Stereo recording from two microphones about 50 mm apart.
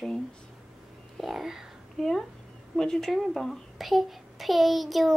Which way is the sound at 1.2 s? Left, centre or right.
Centre.